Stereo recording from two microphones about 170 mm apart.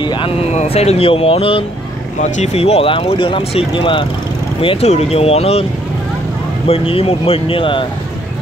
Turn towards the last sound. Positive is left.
turn(degrees=30)  # may be behind; listen again after turning